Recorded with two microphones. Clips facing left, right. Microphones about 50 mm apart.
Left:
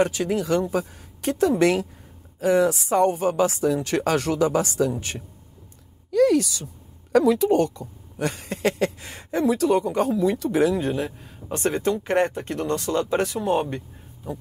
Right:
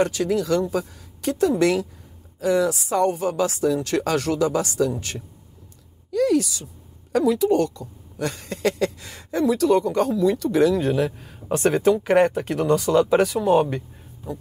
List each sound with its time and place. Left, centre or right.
0.0 s speech: left
6.1 s a sound: left
7.4 s speech: left
10.8 s speech: centre